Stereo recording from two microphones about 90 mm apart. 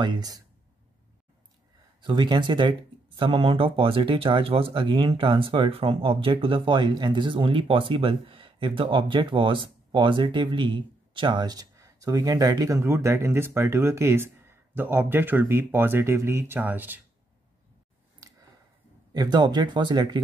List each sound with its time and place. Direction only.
0.0 s speech: 50° right (ahead or behind)
2.0 s speech: 60° right (ahead or behind)
3.2 s speech: 90° right; by 11.6 s 55° right (ahead or behind)
11.7 s speech: 40° right (ahead or behind); by 17.0 s 20° right (ahead or behind)
19.1 s speech: 55° right (ahead or behind)